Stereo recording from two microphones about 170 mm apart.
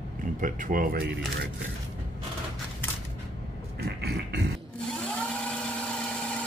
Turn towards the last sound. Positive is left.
turn(degrees=5)  # may be behind; listen again after turning